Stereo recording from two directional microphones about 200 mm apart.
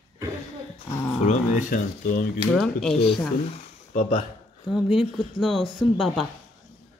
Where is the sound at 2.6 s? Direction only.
5° left (ahead or behind).